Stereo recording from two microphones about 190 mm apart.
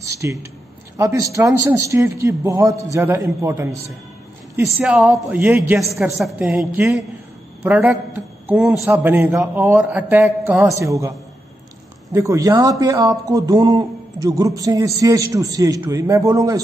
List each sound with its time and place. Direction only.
0.2 s a man's voice: 15° right (ahead or behind)
4.6 s a man's voice: 5° right (ahead or behind)